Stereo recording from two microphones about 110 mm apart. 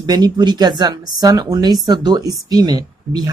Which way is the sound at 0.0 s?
40° right (ahead or behind).